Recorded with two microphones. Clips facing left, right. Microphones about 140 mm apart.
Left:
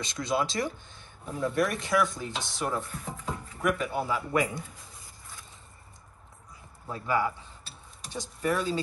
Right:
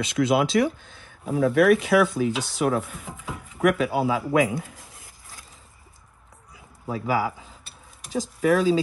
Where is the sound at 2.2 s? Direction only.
90° right.